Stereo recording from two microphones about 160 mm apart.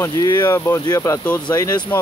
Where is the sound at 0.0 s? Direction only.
20° left (ahead or behind).